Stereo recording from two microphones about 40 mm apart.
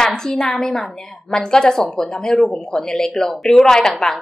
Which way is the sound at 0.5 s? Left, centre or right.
Centre.